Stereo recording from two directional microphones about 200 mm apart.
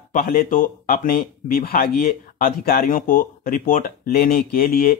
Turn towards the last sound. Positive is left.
turn(degrees=45)  # may be behind; listen again after turning